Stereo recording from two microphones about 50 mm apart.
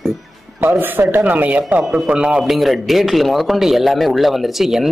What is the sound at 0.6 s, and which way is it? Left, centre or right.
Speech, right.